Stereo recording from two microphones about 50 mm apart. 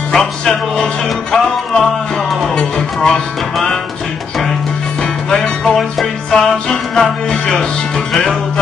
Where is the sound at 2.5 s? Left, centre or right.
Centre.